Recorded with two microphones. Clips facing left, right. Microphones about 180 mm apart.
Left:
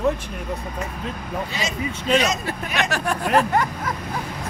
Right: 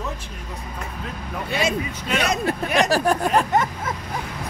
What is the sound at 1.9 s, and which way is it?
Speech, 25° left (ahead or behind).